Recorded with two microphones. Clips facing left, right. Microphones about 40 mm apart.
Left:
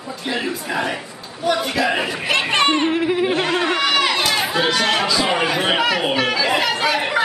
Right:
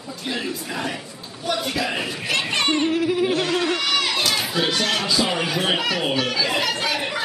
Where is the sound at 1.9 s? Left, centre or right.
Left.